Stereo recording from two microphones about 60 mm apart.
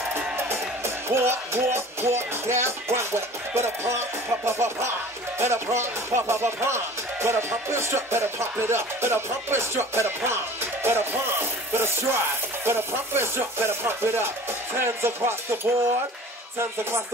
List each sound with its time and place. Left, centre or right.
0.1 s music: right
4.5 s speech: right